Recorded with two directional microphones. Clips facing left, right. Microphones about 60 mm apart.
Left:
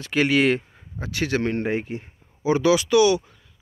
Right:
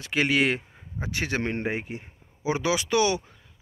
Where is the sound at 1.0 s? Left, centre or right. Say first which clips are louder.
Left 4 dB; right.